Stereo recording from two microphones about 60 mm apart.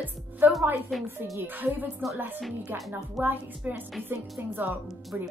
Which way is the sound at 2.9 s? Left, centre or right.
Right.